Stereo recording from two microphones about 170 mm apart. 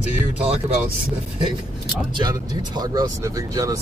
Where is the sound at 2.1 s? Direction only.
25° right (ahead or behind).